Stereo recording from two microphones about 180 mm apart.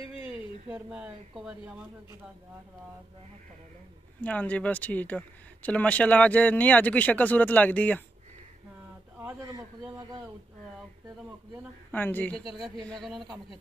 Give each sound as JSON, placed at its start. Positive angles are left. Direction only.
{"t": 0.7, "sound": "speech", "side_deg": -5}
{"t": 4.2, "sound": "speech", "side_deg": 10}
{"t": 9.4, "sound": "a man's voice", "side_deg": -20}
{"t": 11.9, "sound": "a man's voice", "side_deg": 10}